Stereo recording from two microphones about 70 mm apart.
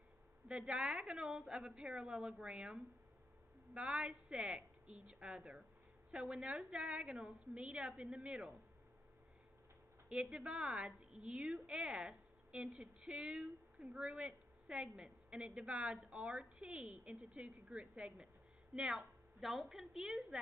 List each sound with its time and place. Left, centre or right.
0.5 s a woman's voice: centre
10.0 s a woman's voice: centre